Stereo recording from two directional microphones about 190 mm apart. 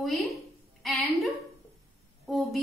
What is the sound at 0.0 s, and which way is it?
A woman's voice, centre (ahead or behind).